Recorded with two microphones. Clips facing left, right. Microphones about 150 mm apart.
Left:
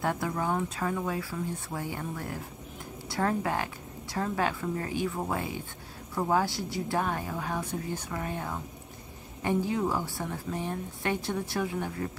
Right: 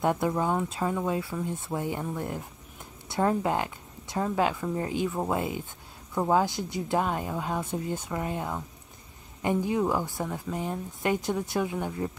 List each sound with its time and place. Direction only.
0.0 s a woman's voice: 20° right (ahead or behind)